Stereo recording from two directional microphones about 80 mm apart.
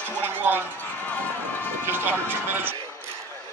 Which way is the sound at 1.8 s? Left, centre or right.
Right.